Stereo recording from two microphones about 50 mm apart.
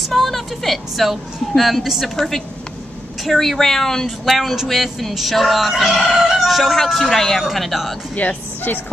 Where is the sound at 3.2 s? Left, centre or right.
Centre.